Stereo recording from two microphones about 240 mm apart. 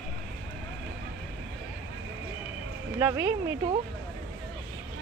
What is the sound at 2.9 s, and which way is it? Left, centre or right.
Speech, centre.